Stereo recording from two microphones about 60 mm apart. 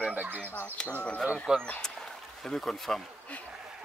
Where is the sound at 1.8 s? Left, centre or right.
Centre.